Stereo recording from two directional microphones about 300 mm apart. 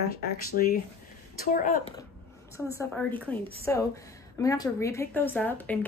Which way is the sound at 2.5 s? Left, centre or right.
Centre.